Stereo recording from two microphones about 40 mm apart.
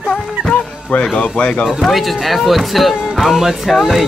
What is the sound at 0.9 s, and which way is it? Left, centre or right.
Speech, left.